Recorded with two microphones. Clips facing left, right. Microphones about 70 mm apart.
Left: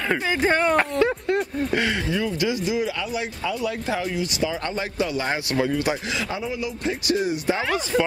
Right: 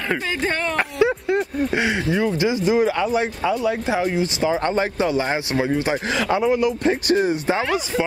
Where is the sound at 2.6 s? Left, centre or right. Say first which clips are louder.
Right 7 dB; right.